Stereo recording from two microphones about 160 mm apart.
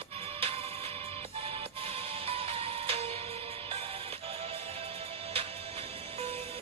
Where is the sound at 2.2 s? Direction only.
35° right (ahead or behind).